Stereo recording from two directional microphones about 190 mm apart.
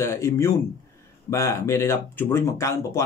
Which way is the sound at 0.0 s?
15° left (ahead or behind).